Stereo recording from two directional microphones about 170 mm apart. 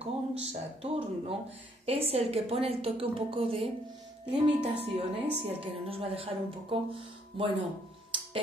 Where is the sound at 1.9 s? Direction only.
35° right (ahead or behind).